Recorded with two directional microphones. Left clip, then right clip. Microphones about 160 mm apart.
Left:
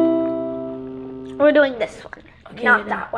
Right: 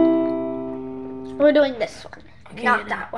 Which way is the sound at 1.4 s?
50° right (ahead or behind).